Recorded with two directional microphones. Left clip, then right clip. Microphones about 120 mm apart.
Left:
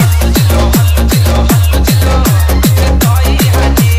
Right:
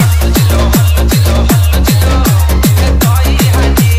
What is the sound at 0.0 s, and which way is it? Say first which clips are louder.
Music: even; centre (ahead or behind).